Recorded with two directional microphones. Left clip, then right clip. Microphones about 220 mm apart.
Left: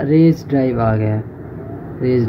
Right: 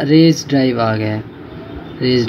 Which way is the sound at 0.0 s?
25° right (ahead or behind).